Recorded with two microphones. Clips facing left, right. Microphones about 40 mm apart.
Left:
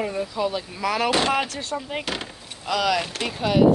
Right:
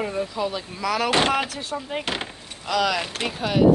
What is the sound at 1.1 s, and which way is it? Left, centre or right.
Speech, right.